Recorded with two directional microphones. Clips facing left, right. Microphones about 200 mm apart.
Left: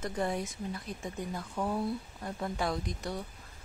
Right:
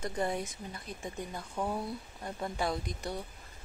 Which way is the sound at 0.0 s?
Centre (ahead or behind).